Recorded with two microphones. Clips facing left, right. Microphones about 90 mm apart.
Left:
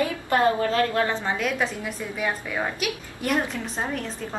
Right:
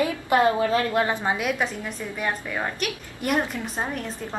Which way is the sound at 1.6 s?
Centre (ahead or behind).